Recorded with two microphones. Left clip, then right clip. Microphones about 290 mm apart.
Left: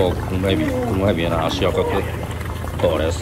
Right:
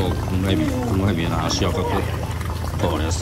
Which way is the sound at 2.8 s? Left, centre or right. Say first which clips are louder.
Left 6 dB; centre.